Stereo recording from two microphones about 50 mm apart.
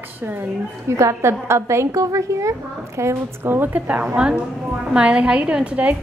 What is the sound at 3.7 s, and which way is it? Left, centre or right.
A woman's voice, right.